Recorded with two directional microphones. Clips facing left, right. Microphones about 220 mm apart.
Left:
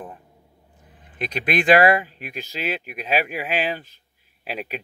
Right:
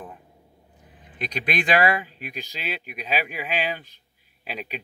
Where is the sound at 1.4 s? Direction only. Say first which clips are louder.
Left 5 dB; 50° left (ahead or behind).